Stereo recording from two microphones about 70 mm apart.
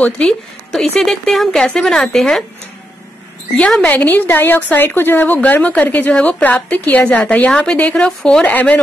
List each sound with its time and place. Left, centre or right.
0.0 s speech: centre
0.7 s speech: centre
3.8 s a woman's voice: left